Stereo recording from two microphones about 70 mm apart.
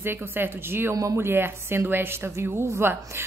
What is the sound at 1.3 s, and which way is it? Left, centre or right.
A woman's voice, right.